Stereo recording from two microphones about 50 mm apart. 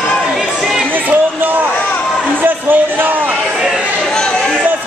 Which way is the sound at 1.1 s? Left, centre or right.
Right.